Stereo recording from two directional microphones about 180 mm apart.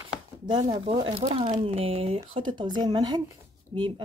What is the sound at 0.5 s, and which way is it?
A woman's voice, 25° right (ahead or behind).